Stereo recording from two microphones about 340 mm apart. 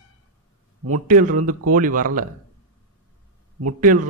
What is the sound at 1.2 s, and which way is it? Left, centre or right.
Speech, right.